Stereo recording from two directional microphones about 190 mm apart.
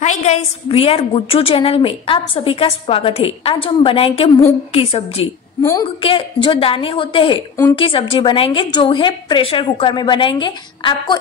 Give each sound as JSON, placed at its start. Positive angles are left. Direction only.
{"t": 0.0, "sound": "a woman's voice", "side_deg": 35}
{"t": 5.6, "sound": "a woman's voice", "side_deg": 15}
{"t": 5.9, "sound": "a woman's voice", "side_deg": 25}